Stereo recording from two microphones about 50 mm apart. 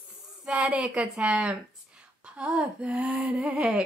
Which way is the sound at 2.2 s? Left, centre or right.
Centre.